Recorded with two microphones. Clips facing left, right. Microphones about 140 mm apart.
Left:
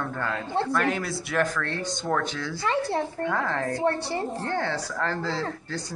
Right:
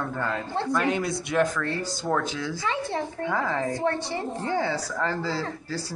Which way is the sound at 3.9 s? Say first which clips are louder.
Left 1 dB; 30° left (ahead or behind).